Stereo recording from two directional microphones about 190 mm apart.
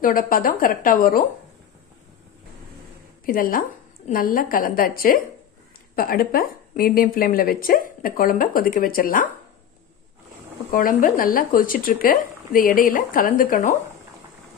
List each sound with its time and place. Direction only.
0.0 s a woman's voice: 45° left (ahead or behind)
3.3 s a woman's voice: 50° left (ahead or behind)
10.7 s a woman's voice: 45° left (ahead or behind)